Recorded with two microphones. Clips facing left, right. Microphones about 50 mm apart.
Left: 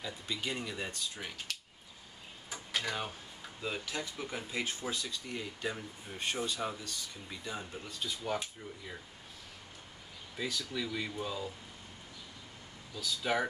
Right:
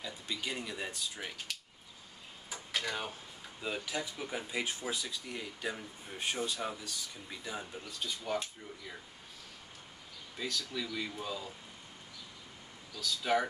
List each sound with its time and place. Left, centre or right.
0.0 s speech: centre
2.5 s a sound: centre
3.6 s speech: centre
10.3 s speech: centre
13.0 s speech: centre